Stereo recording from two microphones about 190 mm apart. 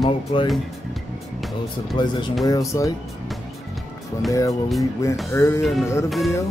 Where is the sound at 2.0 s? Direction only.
25° left (ahead or behind).